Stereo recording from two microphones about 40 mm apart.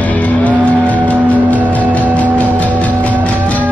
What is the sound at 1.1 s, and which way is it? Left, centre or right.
Music, right.